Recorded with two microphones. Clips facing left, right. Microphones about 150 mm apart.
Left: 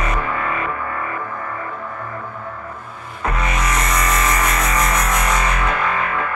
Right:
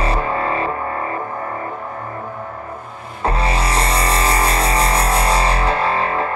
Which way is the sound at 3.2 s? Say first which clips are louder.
Right 3 dB; 30° right (ahead or behind).